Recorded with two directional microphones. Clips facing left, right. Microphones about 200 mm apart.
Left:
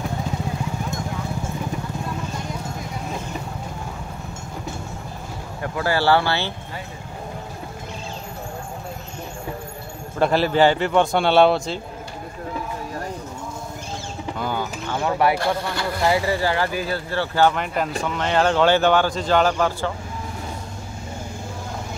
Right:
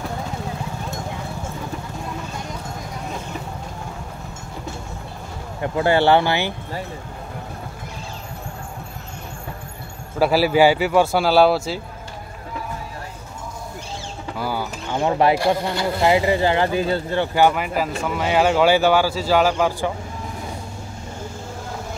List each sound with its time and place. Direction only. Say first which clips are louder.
5.6 s speech: right 5 dB; 20° right (ahead or behind)
10.1 s speech: right 2 dB; 5° right (ahead or behind)
14.4 s mechanisms: right 1 dB; 10° right (ahead or behind)
15.0 s speech: right 3 dB; 25° right (ahead or behind)